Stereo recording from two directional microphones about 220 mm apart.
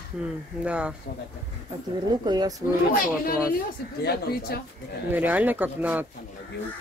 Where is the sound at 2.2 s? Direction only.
20° right (ahead or behind).